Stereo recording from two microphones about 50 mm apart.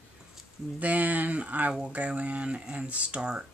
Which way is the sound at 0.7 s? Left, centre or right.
Right.